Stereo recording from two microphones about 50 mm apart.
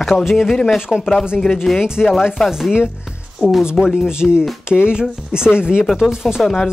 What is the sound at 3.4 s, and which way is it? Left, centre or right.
Speech, centre.